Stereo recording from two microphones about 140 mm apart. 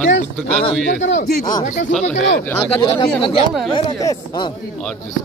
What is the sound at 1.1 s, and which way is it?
Speech, 60° left (ahead or behind).